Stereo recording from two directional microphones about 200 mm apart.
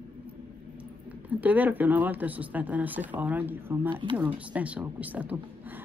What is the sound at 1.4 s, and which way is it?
Speech, 10° right (ahead or behind).